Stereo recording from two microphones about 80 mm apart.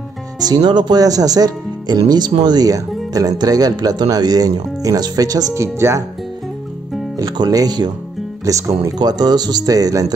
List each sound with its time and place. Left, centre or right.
0.4 s speech: right
5.5 s speech: right
7.2 s speech: right
8.5 s speech: right
8.9 s speech: right